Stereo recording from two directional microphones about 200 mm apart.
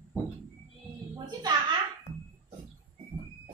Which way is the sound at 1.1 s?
20° right (ahead or behind).